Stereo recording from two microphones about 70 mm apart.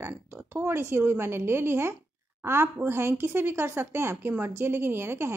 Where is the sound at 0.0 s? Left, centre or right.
Right.